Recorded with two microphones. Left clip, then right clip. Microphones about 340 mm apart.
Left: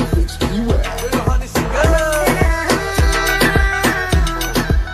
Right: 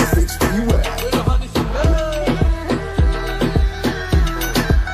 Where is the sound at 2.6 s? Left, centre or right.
Left.